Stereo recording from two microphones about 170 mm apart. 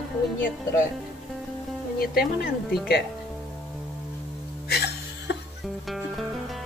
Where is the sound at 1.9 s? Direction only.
65° left (ahead or behind).